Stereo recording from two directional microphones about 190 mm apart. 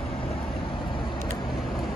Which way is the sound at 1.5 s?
Centre (ahead or behind).